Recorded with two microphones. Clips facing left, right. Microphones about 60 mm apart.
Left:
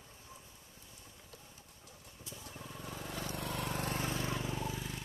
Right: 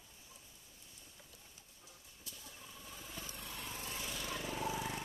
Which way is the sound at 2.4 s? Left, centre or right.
Left.